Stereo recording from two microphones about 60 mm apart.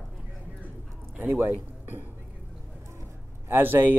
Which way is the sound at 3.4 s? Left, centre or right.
Right.